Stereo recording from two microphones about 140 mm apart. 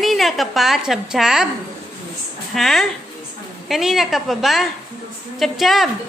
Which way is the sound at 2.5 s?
Centre (ahead or behind).